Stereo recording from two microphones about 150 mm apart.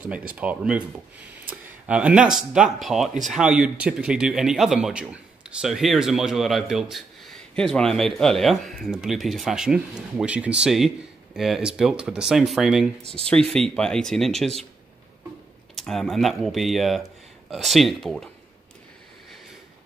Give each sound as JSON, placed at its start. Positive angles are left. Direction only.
{"t": 0.0, "sound": "speech", "side_deg": -10}
{"t": 13.0, "sound": "speech", "side_deg": -40}
{"t": 13.3, "sound": "speech", "side_deg": 5}
{"t": 15.7, "sound": "speech", "side_deg": 0}